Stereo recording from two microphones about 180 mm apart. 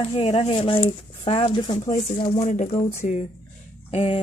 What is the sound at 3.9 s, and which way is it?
Speech, 30° left (ahead or behind).